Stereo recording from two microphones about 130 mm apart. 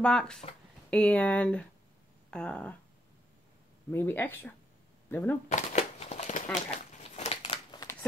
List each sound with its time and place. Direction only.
0.0 s speech: 5° left (ahead or behind)
3.9 s speech: 15° left (ahead or behind)
5.5 s a sound: 65° left (ahead or behind); by 7.8 s 45° left (ahead or behind)